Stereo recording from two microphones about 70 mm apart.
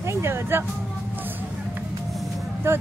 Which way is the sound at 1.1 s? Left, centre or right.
Right.